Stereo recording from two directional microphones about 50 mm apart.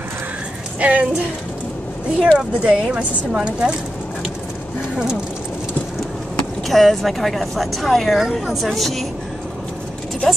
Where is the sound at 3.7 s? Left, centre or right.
Centre.